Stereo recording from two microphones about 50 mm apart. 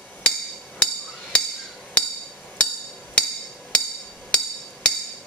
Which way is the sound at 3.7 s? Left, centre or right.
Left.